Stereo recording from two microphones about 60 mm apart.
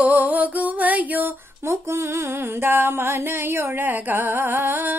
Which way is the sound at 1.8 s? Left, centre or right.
Right.